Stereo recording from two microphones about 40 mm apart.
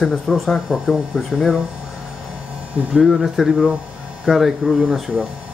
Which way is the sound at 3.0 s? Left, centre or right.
Centre.